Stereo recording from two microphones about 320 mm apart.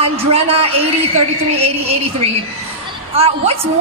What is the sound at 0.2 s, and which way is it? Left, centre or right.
A man's voice, centre.